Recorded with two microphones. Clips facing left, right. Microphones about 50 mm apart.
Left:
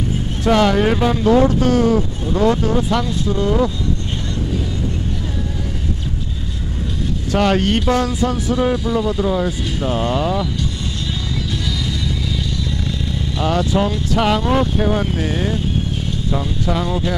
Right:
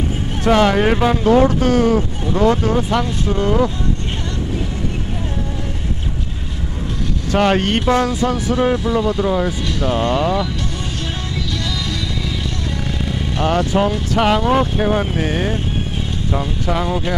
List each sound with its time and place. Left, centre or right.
0.5 s speech: right
1.3 s speech: right
7.3 s speech: right
8.1 s speech: right
9.9 s speech: right
11.0 s music: right
11.5 s music: right
12.5 s vehicle: right
13.9 s speech: right
15.1 s speech: right